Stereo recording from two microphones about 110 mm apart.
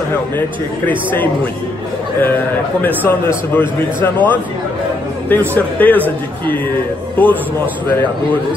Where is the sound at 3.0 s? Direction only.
20° left (ahead or behind).